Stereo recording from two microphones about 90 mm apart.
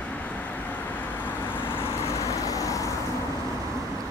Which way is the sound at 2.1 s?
40° left (ahead or behind).